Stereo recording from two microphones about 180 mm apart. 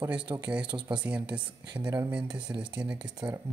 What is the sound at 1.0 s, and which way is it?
Speech, 5° right (ahead or behind).